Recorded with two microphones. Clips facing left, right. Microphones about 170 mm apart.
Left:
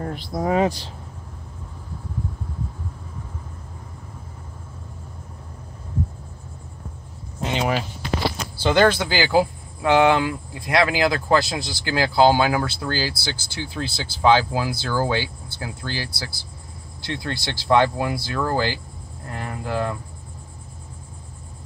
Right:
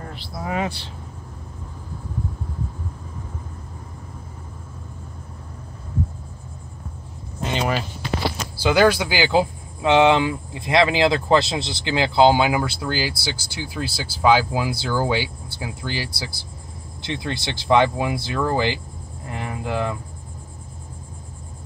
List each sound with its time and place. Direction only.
0.0 s speech: 45° left (ahead or behind)
7.4 s speech: 10° left (ahead or behind)
8.5 s speech: 10° right (ahead or behind)